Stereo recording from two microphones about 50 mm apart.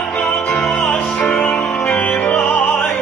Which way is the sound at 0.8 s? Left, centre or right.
Centre.